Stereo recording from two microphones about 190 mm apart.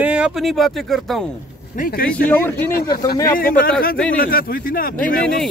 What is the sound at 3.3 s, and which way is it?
A man's voice, 50° left (ahead or behind).